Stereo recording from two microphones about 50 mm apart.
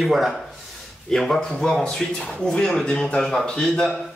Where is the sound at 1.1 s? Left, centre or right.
Centre.